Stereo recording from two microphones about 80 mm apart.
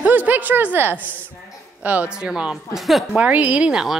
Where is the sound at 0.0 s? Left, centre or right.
Right; by 3.1 s centre.